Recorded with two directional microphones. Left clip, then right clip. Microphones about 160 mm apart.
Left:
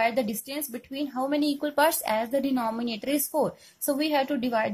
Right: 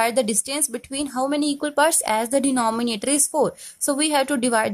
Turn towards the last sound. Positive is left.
turn(degrees=-45)  # may be behind; listen again after turning